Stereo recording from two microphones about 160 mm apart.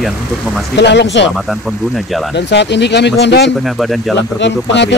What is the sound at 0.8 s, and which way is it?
Speech, 90° left.